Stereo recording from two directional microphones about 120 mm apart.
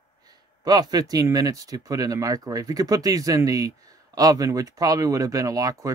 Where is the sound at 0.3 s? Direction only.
35° right (ahead or behind).